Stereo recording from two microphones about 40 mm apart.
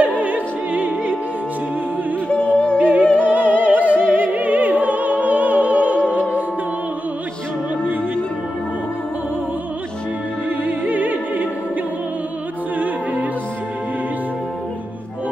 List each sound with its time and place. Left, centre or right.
0.0 s opera: right
2.2 s music: left
3.3 s music: right
10.6 s music: right
12.7 s opera: right